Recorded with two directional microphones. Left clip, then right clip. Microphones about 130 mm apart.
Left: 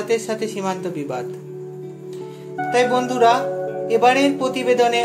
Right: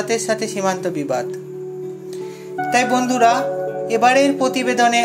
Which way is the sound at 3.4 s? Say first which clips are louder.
Right 2 dB; centre (ahead or behind).